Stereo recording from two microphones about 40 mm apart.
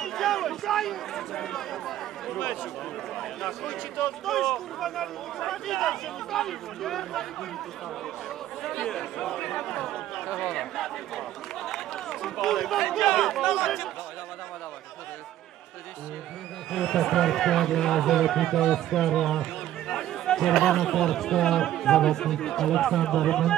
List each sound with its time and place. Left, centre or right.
0.0 s a sound: centre
3.2 s speech: centre
4.3 s speech: centre
8.8 s speech: centre
10.2 s speech: centre
10.5 s speech: centre
16.7 s speech: centre
20.5 s speech: centre